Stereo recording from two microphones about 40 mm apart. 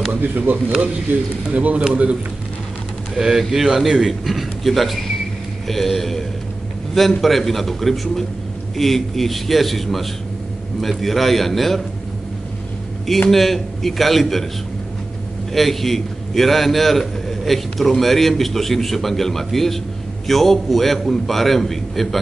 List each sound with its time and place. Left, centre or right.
0.1 s speech: right
1.5 s speech: right
3.2 s a man's voice: centre
13.3 s a man's voice: centre
15.5 s a man's voice: centre